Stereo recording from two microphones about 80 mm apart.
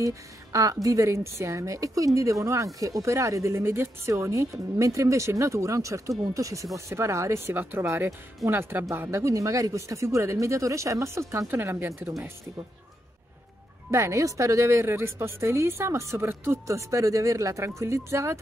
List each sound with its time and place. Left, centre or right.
0.0 s a woman's voice: right
13.8 s a woman's voice: right